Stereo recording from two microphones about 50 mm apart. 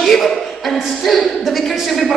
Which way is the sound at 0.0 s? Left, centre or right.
Centre.